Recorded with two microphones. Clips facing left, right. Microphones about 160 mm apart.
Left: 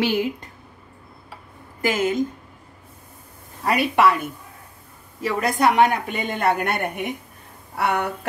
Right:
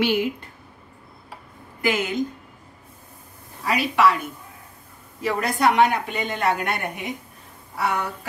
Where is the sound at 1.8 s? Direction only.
40° left (ahead or behind).